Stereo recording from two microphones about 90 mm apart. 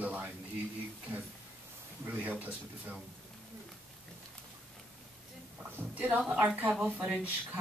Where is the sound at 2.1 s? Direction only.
20° right (ahead or behind).